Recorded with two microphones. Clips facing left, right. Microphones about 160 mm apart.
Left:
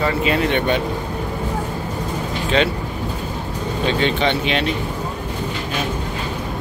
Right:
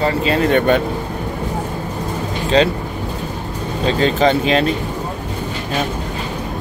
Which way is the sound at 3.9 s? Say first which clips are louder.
Right 5 dB; 40° right (ahead or behind).